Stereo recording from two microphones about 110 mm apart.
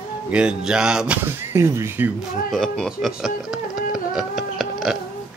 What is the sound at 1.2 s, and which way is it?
Speech, 25° right (ahead or behind).